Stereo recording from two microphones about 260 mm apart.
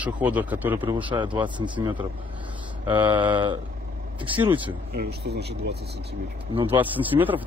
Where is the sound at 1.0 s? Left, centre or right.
Centre.